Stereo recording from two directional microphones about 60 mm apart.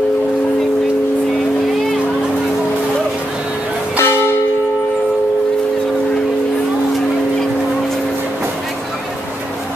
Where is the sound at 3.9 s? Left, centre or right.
Left.